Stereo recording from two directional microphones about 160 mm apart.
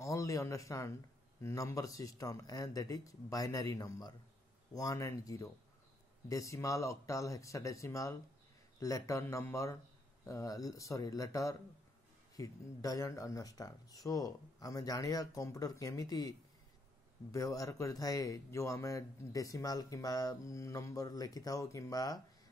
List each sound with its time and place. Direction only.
0.0 s a man's voice: 20° left (ahead or behind)